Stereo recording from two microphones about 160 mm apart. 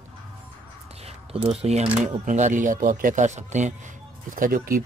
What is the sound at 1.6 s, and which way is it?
Speech, 40° right (ahead or behind).